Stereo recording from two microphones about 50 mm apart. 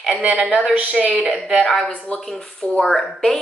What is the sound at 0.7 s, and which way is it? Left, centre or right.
Speech, right.